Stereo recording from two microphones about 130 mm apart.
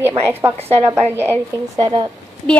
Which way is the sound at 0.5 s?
50° right (ahead or behind).